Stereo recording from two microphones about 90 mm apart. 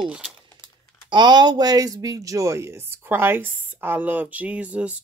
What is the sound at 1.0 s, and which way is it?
A woman's voice, 55° right (ahead or behind).